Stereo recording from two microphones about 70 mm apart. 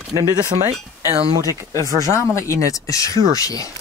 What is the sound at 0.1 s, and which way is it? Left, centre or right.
Speech, right.